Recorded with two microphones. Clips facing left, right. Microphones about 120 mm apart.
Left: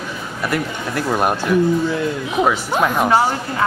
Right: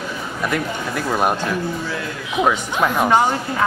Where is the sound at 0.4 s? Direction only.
5° left (ahead or behind).